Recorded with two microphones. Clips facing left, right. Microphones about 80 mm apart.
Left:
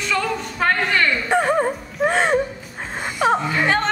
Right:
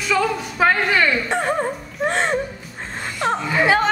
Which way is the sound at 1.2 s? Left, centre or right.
Centre.